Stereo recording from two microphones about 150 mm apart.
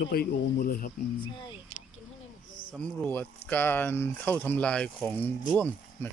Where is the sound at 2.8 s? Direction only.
10° left (ahead or behind).